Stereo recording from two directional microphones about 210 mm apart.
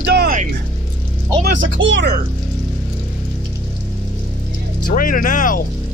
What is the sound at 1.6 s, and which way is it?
Speech, 60° right (ahead or behind).